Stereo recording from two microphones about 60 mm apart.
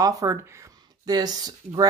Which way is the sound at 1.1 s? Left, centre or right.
Right.